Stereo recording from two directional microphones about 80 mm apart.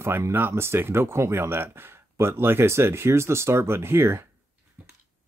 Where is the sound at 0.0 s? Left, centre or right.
Right.